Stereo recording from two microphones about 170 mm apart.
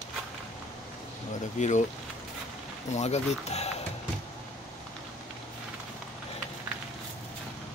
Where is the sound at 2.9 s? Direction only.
40° left (ahead or behind).